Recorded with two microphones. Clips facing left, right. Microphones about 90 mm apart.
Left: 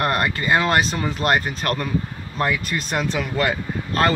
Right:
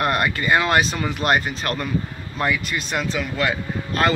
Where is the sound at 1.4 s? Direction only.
40° left (ahead or behind).